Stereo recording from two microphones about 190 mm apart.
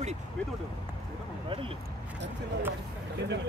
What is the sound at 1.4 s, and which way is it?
Speech, 30° right (ahead or behind).